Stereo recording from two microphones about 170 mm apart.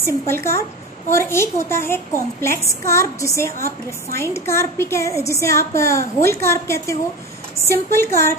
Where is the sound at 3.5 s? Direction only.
60° right (ahead or behind).